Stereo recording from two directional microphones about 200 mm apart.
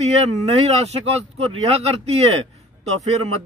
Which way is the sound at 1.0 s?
30° right (ahead or behind).